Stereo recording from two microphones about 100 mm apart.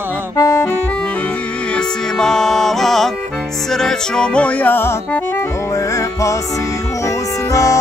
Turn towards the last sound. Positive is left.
turn(degrees=35)  # may be behind; listen again after turning